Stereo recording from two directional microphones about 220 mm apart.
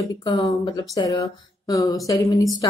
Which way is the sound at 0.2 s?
20° left (ahead or behind).